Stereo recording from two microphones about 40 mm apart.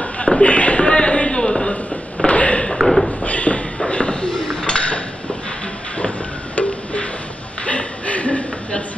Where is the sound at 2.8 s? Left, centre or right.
Centre.